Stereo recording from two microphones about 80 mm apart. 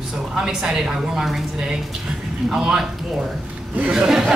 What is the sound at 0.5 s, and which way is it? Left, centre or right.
Speech, centre.